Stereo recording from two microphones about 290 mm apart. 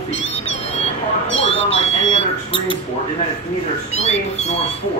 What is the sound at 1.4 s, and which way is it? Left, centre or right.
Speech, centre.